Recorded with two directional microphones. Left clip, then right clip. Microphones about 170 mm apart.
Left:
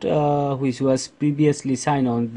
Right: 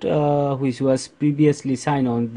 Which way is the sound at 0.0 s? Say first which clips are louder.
Right 1 dB; centre (ahead or behind).